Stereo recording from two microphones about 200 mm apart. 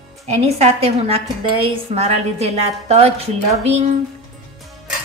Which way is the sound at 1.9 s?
30° right (ahead or behind).